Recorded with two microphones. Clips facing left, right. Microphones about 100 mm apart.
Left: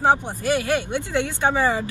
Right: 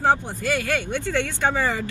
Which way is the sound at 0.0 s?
15° left (ahead or behind).